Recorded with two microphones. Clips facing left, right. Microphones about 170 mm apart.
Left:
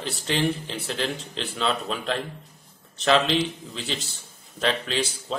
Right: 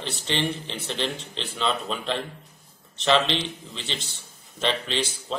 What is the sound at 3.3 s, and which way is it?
A man's voice, 5° left (ahead or behind).